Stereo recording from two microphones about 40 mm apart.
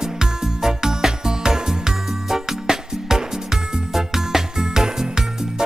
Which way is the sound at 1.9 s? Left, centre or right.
Centre.